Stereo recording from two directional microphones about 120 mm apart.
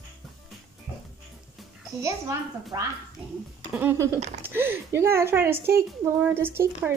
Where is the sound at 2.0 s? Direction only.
25° right (ahead or behind).